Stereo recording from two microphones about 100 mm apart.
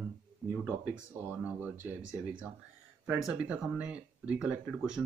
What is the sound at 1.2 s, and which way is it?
Speech, 15° right (ahead or behind).